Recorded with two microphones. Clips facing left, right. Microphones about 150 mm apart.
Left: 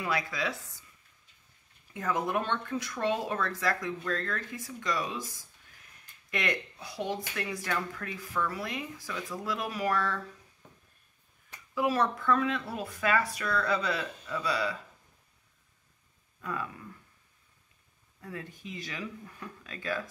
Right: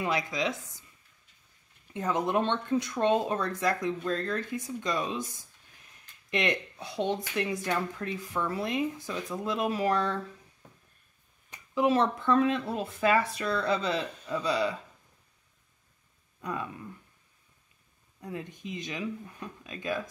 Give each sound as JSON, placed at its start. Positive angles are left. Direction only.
{"t": 0.0, "sound": "speech", "side_deg": -20}
{"t": 2.0, "sound": "speech", "side_deg": -25}
{"t": 11.5, "sound": "speech", "side_deg": -20}
{"t": 16.3, "sound": "speech", "side_deg": -20}
{"t": 18.2, "sound": "speech", "side_deg": -20}